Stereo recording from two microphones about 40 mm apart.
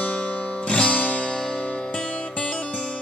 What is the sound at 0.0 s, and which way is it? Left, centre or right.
Music, left.